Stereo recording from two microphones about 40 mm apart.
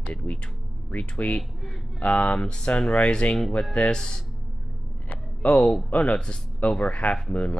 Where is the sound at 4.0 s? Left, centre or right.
Centre.